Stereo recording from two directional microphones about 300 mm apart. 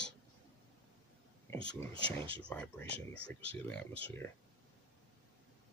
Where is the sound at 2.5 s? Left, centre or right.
Centre.